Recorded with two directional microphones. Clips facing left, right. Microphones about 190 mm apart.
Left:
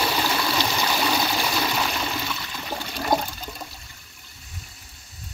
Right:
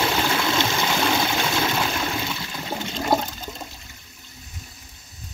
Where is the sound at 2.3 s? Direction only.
20° right (ahead or behind).